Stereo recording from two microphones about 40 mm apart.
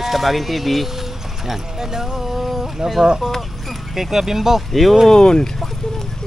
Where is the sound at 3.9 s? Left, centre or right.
Centre.